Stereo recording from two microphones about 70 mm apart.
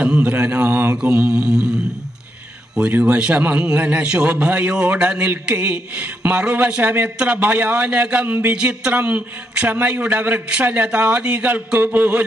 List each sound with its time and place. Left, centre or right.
0.0 s a man's voice: centre
3.0 s a man's voice: centre